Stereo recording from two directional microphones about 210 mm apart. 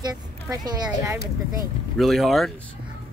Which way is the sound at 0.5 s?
15° right (ahead or behind).